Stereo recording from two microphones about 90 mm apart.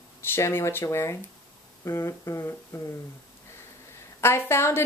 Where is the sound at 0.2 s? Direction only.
25° left (ahead or behind).